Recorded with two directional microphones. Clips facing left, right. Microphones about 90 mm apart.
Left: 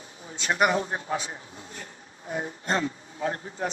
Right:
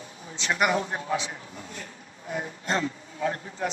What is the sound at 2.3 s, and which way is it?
Speech, 35° left (ahead or behind).